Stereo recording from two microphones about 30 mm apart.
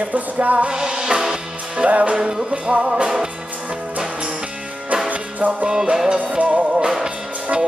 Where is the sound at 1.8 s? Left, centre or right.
Right.